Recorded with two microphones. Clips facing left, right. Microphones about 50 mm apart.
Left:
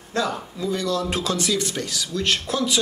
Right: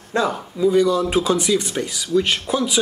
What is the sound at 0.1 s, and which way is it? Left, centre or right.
Speech, centre.